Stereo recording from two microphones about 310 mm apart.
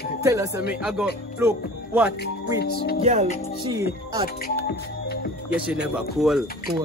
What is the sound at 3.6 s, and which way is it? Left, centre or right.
Speech, centre.